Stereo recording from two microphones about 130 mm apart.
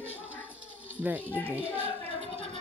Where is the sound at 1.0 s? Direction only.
15° right (ahead or behind).